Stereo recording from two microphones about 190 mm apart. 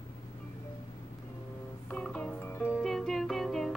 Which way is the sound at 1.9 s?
5° left (ahead or behind).